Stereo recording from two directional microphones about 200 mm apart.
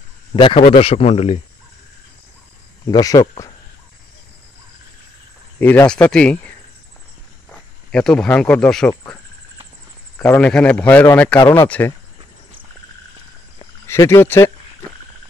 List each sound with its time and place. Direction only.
0.3 s speech: 25° left (ahead or behind)
2.8 s speech: 20° left (ahead or behind)
5.6 s speech: 10° left (ahead or behind)
7.9 s speech: 5° left (ahead or behind)
10.1 s speech: 5° left (ahead or behind)
13.8 s speech: 15° left (ahead or behind)